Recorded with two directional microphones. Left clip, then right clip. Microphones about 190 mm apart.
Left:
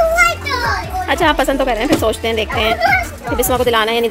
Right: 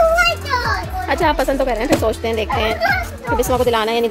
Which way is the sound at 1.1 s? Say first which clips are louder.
Left 2 dB; centre (ahead or behind).